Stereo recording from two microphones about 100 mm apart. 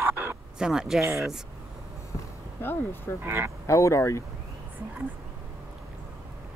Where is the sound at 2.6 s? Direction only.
20° left (ahead or behind).